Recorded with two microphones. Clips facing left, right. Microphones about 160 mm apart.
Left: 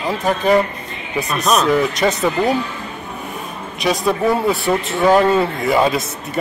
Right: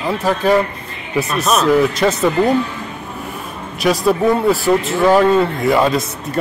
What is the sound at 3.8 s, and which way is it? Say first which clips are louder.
Speech: right 3 dB; centre (ahead or behind).